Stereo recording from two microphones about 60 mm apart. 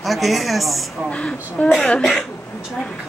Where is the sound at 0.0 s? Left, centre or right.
Centre.